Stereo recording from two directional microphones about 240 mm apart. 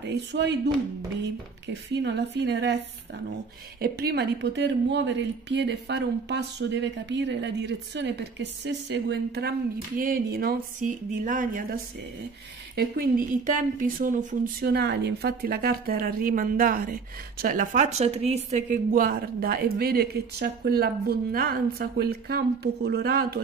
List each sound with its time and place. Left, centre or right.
0.0 s a woman's voice: right
1.7 s a woman's voice: right
3.8 s a woman's voice: right